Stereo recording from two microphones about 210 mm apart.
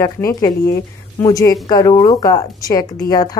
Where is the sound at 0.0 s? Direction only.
15° left (ahead or behind).